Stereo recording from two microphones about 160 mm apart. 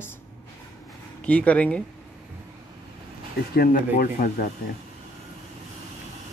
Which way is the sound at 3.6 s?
65° left (ahead or behind).